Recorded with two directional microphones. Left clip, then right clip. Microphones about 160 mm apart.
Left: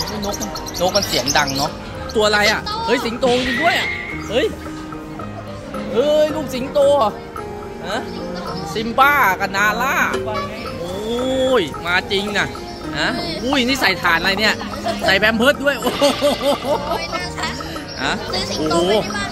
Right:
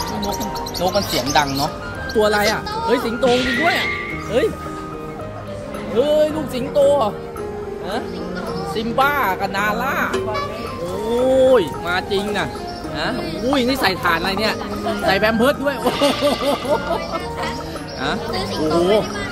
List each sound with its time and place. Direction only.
0.3 s speech: 10° left (ahead or behind)
2.1 s speech: 10° right (ahead or behind)
5.9 s speech: 15° left (ahead or behind)
8.7 s speech: 20° left (ahead or behind); by 10.4 s 5° left (ahead or behind)
11.4 s speech: centre (ahead or behind)
13.5 s speech: centre (ahead or behind)
18.3 s speech: 25° left (ahead or behind)